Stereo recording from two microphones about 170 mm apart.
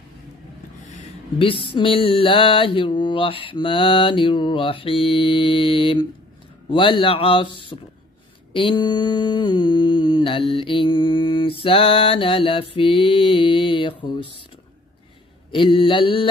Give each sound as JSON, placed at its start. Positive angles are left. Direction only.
{"t": 1.0, "sound": "mantra", "side_deg": 30}
{"t": 15.5, "sound": "mantra", "side_deg": 30}